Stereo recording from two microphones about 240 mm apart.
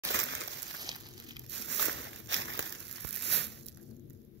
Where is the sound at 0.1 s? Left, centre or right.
Right.